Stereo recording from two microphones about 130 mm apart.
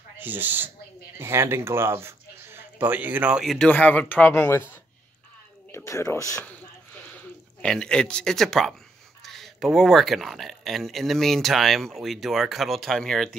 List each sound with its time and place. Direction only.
0.2 s speech: 15° right (ahead or behind)
3.5 s speech: 10° left (ahead or behind)
5.7 s speech: 20° left (ahead or behind)
6.4 s a sound: 10° left (ahead or behind)
9.2 s speech: centre (ahead or behind)